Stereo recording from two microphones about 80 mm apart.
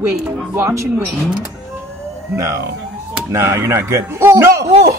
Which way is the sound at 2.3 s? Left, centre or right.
Right.